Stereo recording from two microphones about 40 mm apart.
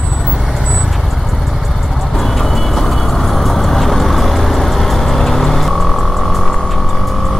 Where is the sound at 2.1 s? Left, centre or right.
Centre.